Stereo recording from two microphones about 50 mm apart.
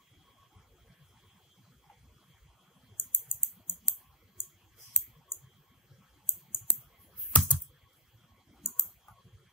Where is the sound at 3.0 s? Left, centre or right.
Left.